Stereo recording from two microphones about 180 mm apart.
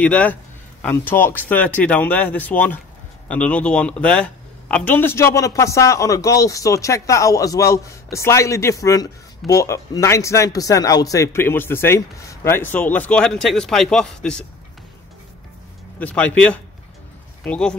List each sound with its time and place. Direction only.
0.0 s speech: 10° left (ahead or behind)
16.0 s speech: 5° left (ahead or behind)